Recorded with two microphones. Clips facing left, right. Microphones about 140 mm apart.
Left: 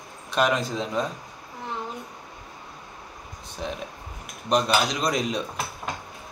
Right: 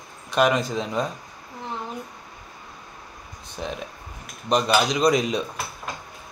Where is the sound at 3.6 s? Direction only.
Centre (ahead or behind).